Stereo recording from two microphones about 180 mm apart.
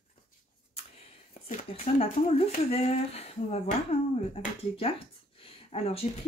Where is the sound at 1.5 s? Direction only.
40° left (ahead or behind).